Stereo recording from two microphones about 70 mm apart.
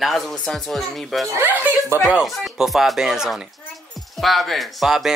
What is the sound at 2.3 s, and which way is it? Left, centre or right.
A child's voice, centre.